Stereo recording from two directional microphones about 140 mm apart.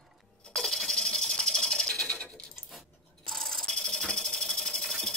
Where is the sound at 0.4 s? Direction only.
5° left (ahead or behind).